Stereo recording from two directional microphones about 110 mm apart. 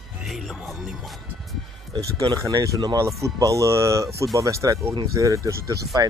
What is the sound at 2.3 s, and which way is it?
Speech, 40° right (ahead or behind).